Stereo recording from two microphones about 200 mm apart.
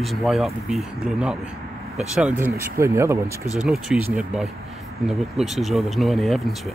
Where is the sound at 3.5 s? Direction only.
Centre (ahead or behind).